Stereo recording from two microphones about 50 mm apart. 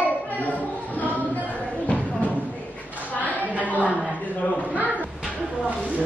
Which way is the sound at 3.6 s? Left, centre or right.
Left.